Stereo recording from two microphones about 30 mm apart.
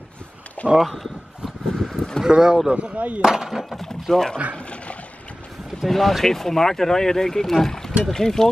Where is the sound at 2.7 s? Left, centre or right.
Right.